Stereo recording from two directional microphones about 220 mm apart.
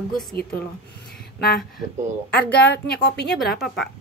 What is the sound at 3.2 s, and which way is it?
Speech, centre (ahead or behind).